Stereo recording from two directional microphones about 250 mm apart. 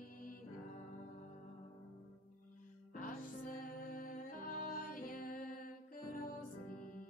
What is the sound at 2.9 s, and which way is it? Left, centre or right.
Music, left.